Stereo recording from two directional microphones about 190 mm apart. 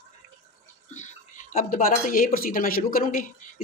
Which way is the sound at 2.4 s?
50° left (ahead or behind).